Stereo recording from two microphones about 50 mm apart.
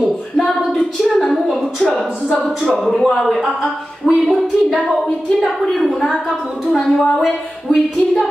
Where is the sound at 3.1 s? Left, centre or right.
Centre.